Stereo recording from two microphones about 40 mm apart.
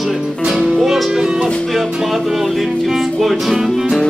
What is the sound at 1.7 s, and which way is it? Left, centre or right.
Speech, centre.